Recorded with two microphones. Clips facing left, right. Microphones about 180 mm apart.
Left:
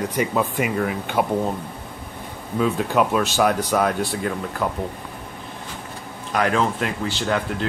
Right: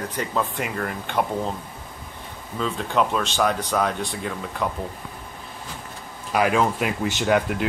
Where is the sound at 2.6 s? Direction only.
5° left (ahead or behind).